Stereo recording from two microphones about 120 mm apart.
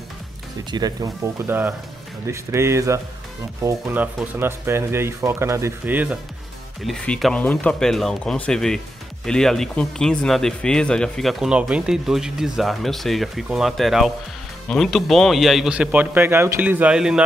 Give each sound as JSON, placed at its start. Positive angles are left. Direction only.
{"t": 0.7, "sound": "speech", "side_deg": -35}
{"t": 6.8, "sound": "a man's voice", "side_deg": 0}